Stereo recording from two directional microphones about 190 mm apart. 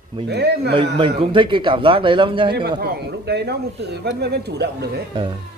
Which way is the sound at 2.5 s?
55° right (ahead or behind).